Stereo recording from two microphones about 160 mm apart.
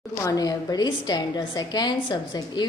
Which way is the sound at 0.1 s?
20° left (ahead or behind).